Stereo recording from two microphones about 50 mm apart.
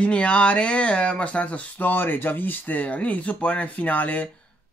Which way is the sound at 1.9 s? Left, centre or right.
Left.